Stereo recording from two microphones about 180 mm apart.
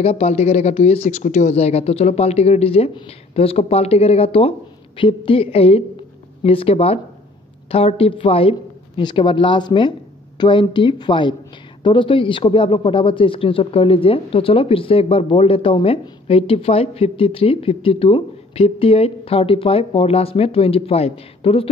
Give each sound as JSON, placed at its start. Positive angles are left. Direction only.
{"t": 0.0, "sound": "a man's voice", "side_deg": 35}